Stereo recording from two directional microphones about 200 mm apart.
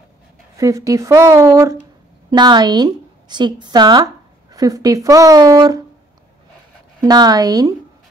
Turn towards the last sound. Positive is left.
turn(degrees=-20)  # may be behind; listen again after turning